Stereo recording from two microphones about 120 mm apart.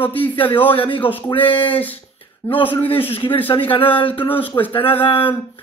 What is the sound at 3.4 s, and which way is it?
Speech, 50° left (ahead or behind).